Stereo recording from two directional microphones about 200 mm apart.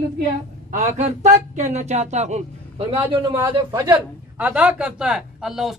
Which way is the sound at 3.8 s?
10° right (ahead or behind).